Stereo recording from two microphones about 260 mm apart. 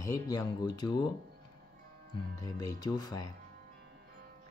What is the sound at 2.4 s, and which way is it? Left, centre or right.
Speech, centre.